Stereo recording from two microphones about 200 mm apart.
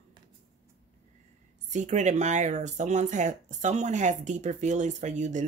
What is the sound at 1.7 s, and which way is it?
Speech, 35° right (ahead or behind).